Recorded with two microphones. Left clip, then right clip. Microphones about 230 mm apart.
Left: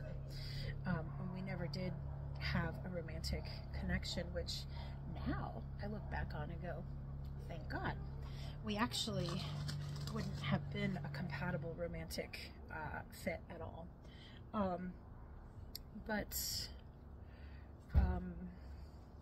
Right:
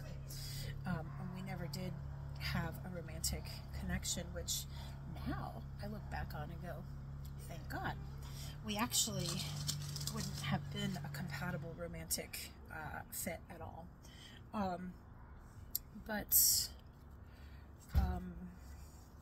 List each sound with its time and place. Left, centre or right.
0.3 s a sound: right
9.2 s speech: centre
10.1 s speech: centre
17.9 s music: right